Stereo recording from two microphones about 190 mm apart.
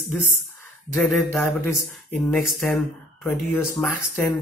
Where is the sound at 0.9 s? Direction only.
10° left (ahead or behind).